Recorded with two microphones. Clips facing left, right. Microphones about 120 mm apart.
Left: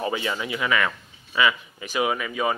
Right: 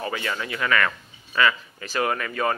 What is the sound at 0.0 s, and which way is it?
Speech, 20° left (ahead or behind).